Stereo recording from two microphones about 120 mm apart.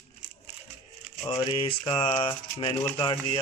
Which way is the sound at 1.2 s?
30° left (ahead or behind).